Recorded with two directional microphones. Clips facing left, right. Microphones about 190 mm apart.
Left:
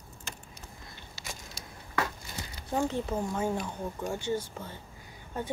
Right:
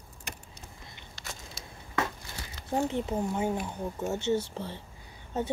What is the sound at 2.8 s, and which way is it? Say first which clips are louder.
A woman's voice: right 1 dB; 20° right (ahead or behind).